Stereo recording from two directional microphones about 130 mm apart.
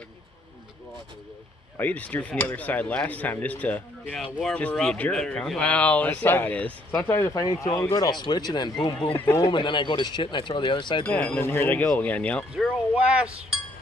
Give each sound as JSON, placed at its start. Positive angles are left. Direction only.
{"t": 1.8, "sound": "speech", "side_deg": 10}
{"t": 9.2, "sound": "speech", "side_deg": 20}
{"t": 9.5, "sound": "speech", "side_deg": 35}
{"t": 11.1, "sound": "speech", "side_deg": 15}
{"t": 12.9, "sound": "speech", "side_deg": -10}